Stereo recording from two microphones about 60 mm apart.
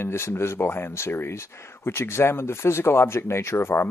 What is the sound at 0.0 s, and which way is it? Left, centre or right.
Speech, left.